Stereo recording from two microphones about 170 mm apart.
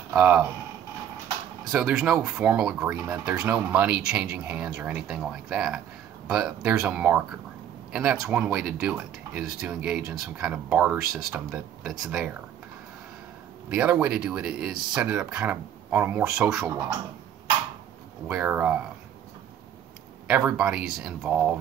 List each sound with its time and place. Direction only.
0.1 s speech: 10° right (ahead or behind)
1.6 s speech: 5° right (ahead or behind)
13.7 s speech: 5° right (ahead or behind)
18.3 s speech: 10° right (ahead or behind)
20.2 s speech: 5° right (ahead or behind)